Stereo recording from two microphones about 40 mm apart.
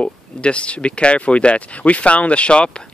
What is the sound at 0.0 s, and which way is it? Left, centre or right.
Speech, left.